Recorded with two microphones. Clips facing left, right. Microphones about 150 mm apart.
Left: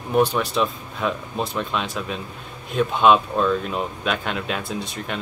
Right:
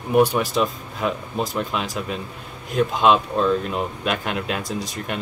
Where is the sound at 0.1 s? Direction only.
10° right (ahead or behind).